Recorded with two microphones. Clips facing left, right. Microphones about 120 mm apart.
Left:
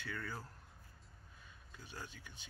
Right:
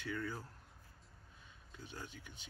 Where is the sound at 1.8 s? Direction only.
20° right (ahead or behind).